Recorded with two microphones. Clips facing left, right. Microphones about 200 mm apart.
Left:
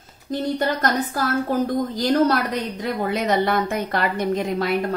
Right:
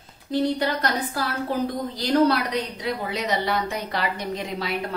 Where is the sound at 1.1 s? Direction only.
45° left (ahead or behind).